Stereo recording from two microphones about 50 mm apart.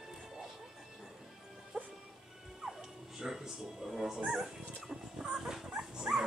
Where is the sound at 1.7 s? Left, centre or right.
Right.